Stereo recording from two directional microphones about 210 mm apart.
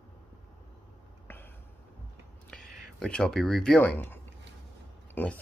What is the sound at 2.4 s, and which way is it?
Speech, 5° left (ahead or behind).